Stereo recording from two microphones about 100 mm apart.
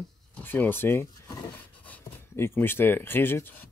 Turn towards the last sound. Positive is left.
turn(degrees=20)  # may be behind; listen again after turning